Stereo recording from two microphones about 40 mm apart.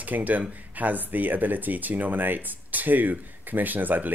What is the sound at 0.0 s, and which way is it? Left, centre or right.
Speech, right.